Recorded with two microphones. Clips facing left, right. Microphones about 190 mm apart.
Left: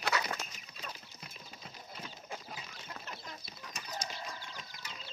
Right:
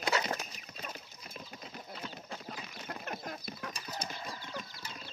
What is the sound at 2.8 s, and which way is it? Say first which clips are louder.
Chicken: right 8 dB; 55° right (ahead or behind).